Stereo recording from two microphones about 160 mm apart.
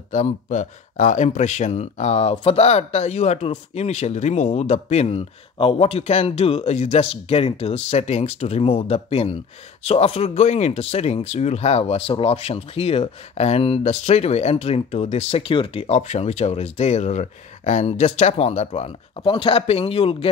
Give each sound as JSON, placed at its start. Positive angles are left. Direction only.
{"t": 0.1, "sound": "speech", "side_deg": 50}